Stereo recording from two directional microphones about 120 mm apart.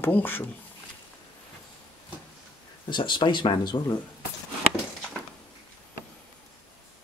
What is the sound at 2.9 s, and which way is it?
Speech, 40° left (ahead or behind).